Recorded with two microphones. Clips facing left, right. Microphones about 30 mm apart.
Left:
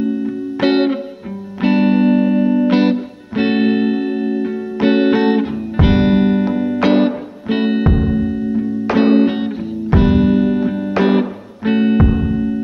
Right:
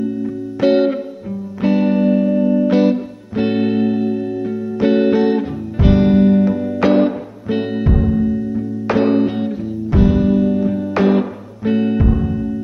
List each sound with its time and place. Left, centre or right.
0.6 s music: left